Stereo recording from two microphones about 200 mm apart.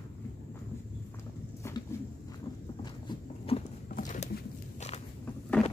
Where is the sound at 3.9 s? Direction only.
40° left (ahead or behind).